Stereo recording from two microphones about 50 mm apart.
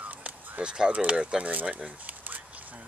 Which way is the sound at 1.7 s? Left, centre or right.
Right.